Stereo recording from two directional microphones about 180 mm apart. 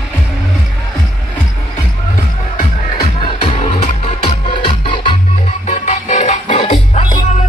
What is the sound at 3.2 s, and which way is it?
Music, 30° left (ahead or behind).